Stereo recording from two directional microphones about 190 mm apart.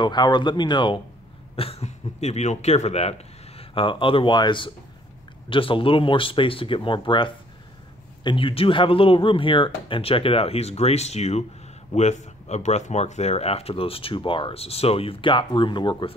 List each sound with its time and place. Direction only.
0.0 s speech: 25° left (ahead or behind)